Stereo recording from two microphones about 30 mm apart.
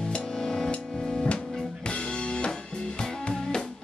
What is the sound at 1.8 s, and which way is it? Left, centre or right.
Music, left.